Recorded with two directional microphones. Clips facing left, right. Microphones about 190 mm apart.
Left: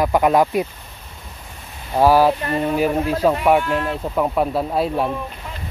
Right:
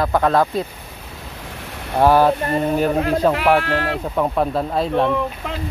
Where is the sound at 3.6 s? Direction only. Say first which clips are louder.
Even; 80° right.